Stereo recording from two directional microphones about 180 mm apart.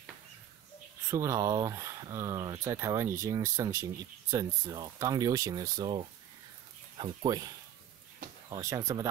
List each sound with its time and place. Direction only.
1.1 s speech: 15° right (ahead or behind)